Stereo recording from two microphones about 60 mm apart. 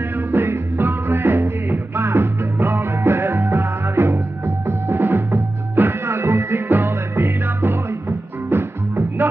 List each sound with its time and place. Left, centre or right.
0.0 s music: right
9.2 s music: right